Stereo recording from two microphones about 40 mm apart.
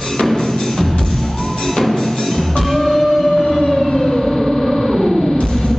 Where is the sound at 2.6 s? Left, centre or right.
Centre.